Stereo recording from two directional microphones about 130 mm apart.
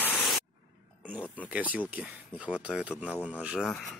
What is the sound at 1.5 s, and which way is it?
Speech, 10° right (ahead or behind).